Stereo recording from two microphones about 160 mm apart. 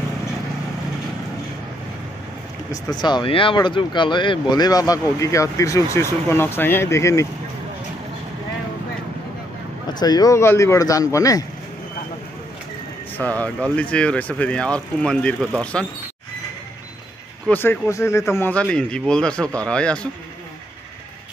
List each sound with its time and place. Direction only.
2.7 s speech: 25° left (ahead or behind)
9.9 s speech: 25° left (ahead or behind)
13.2 s speech: 10° left (ahead or behind)
17.5 s a man's voice: 15° left (ahead or behind)